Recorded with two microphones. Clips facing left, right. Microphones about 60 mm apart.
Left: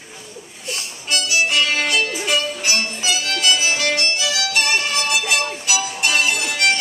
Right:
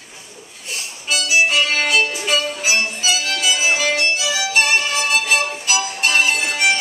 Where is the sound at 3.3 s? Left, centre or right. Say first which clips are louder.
Left 1 dB; centre.